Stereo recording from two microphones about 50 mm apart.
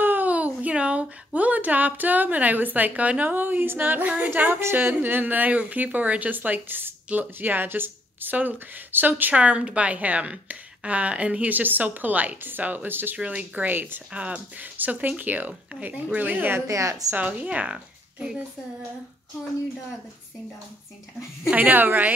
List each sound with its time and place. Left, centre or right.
0.0 s a sound: right
0.3 s speech: right
3.3 s speech: right
9.3 s a woman's voice: right
13.2 s speech: right
14.1 s speech: right
16.6 s a woman's voice: right
17.2 s a woman's voice: right
17.7 s speech: centre
21.5 s speech: right